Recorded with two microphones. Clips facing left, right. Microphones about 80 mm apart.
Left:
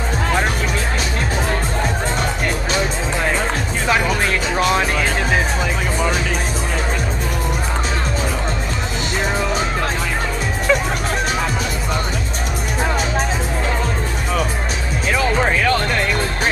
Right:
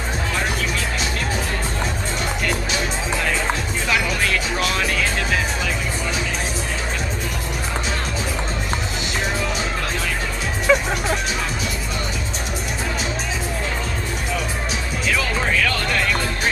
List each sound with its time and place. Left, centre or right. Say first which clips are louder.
3.8 s music: left 4 dB; left
10.7 s music: even; centre
15.0 s music: left 5 dB; left